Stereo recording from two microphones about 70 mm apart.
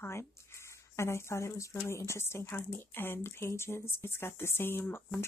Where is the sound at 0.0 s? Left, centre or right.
Left.